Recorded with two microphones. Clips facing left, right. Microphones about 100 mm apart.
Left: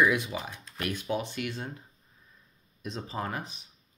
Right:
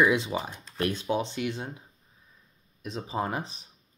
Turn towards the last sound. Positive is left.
turn(degrees=-20)  # may be behind; listen again after turning